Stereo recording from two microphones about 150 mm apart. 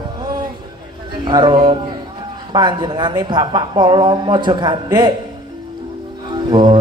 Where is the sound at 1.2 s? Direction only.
30° right (ahead or behind).